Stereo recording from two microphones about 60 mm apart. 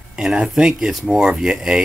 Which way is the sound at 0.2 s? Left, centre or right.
Centre.